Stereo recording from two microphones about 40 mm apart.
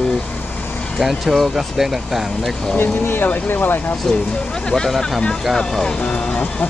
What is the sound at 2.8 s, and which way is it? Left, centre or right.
Speech, left.